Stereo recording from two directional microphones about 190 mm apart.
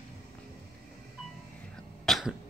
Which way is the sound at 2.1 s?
Centre (ahead or behind).